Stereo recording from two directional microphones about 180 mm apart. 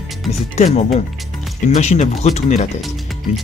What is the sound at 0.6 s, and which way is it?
Speech, 40° left (ahead or behind).